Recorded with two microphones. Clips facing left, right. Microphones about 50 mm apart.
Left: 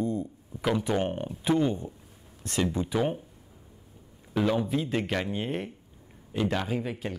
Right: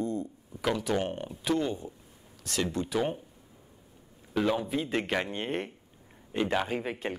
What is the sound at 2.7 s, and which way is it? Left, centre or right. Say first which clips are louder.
Speech: left 2 dB; centre.